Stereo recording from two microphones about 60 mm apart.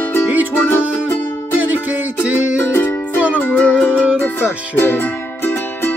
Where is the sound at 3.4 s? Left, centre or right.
Left.